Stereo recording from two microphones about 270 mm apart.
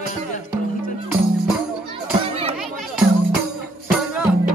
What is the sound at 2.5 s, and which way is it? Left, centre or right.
Music, centre.